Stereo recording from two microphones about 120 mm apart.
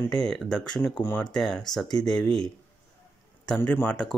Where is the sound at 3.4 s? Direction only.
15° left (ahead or behind).